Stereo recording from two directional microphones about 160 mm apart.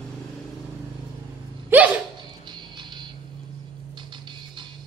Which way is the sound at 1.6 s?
10° right (ahead or behind).